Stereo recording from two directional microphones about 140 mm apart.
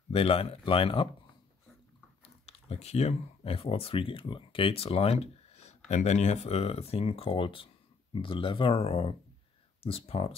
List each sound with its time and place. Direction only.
0.1 s speech: 45° left (ahead or behind)
2.2 s speech: 45° left (ahead or behind)